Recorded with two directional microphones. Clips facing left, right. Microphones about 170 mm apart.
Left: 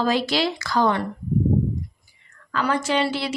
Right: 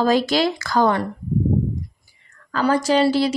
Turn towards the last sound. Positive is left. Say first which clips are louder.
# right 6 dB
turn(degrees=-40)  # may be behind; listen again after turning